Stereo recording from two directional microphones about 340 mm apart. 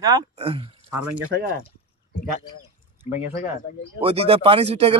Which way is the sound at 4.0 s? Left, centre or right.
Centre.